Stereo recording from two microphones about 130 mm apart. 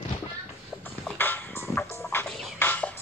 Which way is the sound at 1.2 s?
15° left (ahead or behind).